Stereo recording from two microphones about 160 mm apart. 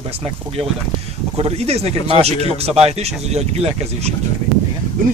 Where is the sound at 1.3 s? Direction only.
35° right (ahead or behind).